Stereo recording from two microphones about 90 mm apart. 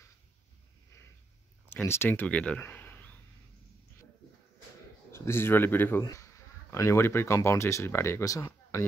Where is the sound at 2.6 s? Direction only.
20° left (ahead or behind).